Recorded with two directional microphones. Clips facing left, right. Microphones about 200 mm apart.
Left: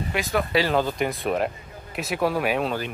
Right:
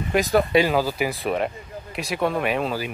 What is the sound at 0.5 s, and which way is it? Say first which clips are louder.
Speech: right 4 dB; 15° right (ahead or behind).